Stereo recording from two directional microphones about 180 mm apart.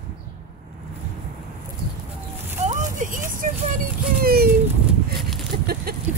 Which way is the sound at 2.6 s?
45° right (ahead or behind).